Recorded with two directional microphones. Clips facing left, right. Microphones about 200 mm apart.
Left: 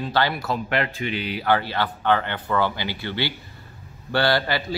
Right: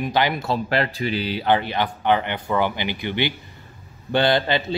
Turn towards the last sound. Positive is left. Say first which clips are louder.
# right 2 dB
turn(degrees=-20)  # may be behind; listen again after turning